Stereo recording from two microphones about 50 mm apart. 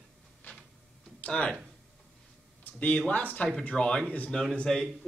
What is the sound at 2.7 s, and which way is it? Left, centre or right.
Speech, left.